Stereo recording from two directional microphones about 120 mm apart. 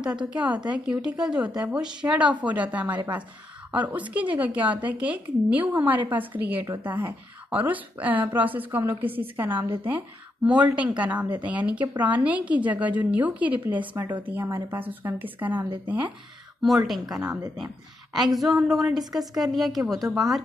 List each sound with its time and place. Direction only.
0.0 s speech: 5° right (ahead or behind)
16.6 s a woman's voice: centre (ahead or behind)
17.0 s speech: 30° right (ahead or behind)
18.1 s a woman's voice: centre (ahead or behind)